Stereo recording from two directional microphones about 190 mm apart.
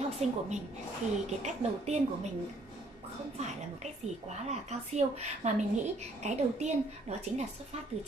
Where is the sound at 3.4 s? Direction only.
35° right (ahead or behind).